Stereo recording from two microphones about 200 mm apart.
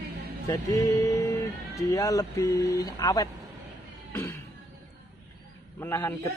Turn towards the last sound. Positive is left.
turn(degrees=10)  # may be behind; listen again after turning